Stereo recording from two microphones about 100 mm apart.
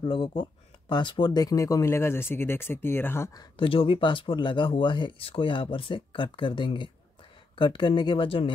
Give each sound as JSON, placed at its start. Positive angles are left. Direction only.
{"t": 0.0, "sound": "speech", "side_deg": 50}
{"t": 1.4, "sound": "speech", "side_deg": 35}
{"t": 3.5, "sound": "speech", "side_deg": 65}